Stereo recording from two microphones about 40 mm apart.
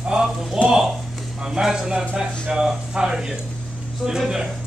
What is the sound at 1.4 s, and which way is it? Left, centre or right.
Speech, centre.